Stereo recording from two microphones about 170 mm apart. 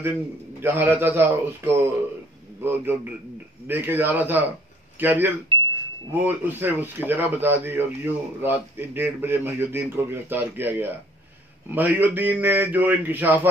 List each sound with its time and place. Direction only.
0.6 s a man's voice: 10° right (ahead or behind)
5.5 s a sound: 30° right (ahead or behind)
6.1 s a man's voice: 10° right (ahead or behind)